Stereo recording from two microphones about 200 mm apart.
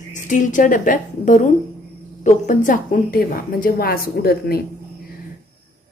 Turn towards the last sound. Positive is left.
turn(degrees=50)  # may be behind; listen again after turning